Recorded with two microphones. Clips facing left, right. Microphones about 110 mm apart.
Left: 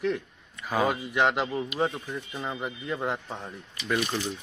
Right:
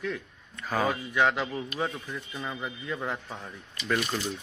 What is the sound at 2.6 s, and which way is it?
Speech, 10° left (ahead or behind).